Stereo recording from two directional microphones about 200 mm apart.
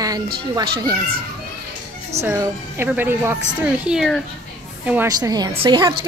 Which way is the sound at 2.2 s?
10° right (ahead or behind).